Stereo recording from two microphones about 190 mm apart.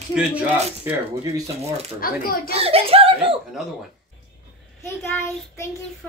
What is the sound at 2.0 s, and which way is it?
Speech, 50° left (ahead or behind).